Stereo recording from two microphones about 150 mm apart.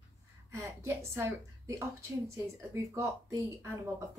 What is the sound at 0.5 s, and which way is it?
A woman's voice, 20° right (ahead or behind).